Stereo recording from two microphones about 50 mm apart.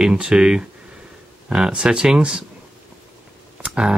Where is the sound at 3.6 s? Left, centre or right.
Centre.